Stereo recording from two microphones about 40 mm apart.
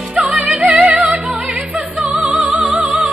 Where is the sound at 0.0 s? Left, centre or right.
Right.